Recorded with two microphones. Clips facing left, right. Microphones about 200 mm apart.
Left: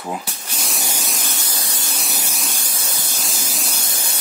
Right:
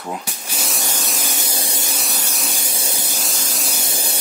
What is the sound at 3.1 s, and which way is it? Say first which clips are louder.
Spray: right 1 dB; centre (ahead or behind).